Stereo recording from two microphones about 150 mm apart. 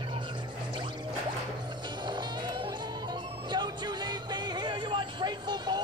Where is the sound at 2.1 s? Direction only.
30° right (ahead or behind).